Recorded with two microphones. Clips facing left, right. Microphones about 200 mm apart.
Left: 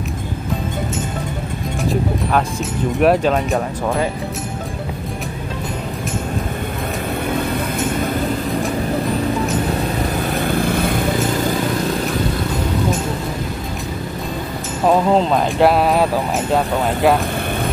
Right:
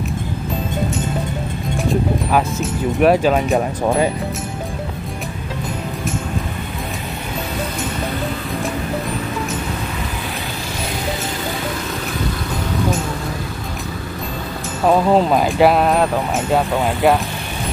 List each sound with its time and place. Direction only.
1.9 s speech: centre (ahead or behind)
10.5 s vehicle: 55° left (ahead or behind)
14.9 s speech: 5° right (ahead or behind)